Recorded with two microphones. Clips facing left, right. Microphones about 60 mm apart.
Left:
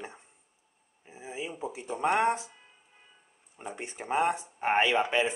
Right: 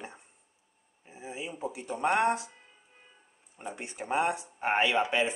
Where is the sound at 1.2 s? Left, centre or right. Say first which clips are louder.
Even; centre.